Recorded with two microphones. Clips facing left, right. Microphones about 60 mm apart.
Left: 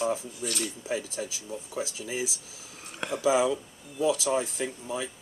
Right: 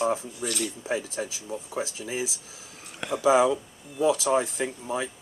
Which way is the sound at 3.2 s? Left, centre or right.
Right.